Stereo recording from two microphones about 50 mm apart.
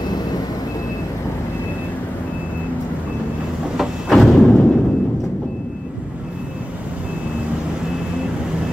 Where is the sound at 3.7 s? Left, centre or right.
Centre.